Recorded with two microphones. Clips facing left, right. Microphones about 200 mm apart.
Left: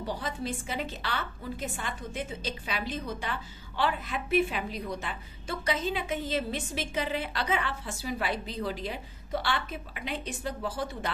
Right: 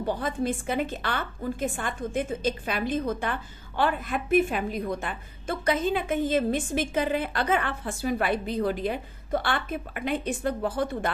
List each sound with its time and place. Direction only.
0.0 s a woman's voice: 55° right (ahead or behind)